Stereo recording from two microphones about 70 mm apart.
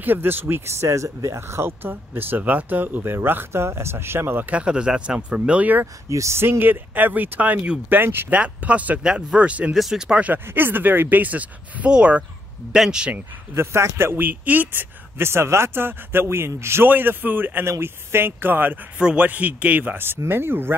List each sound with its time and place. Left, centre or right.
0.0 s speech: right
4.5 s speech: centre
6.0 s speech: right
8.3 s speech: centre
9.8 s speech: centre
10.2 s speech: right; by 13.1 s centre
13.6 s speech: right
18.9 s speech: centre; by 20.7 s right